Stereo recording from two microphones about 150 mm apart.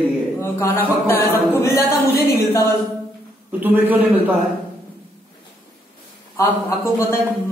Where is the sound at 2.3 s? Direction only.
20° left (ahead or behind).